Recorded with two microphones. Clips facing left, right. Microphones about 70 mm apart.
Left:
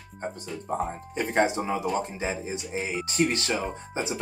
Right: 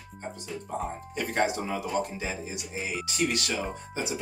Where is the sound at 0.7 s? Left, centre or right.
Left.